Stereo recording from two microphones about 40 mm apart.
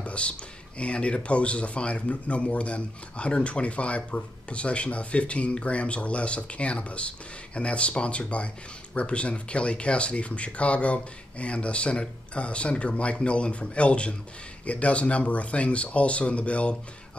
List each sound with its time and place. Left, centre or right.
0.0 s speech: left